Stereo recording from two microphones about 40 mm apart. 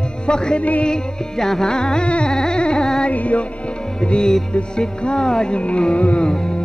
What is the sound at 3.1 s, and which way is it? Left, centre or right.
Music, left.